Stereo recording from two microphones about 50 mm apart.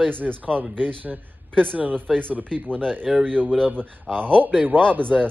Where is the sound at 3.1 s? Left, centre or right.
Centre.